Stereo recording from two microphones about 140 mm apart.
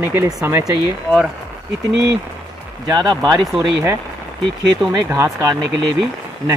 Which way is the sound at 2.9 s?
30° right (ahead or behind).